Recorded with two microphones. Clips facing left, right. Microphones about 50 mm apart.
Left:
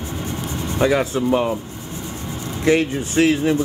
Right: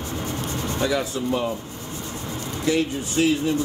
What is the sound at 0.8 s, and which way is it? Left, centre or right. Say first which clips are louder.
Speech: left 7 dB; left.